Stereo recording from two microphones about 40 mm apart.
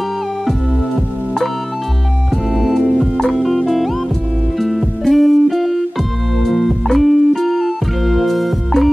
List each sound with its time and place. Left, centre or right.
2.5 s music: centre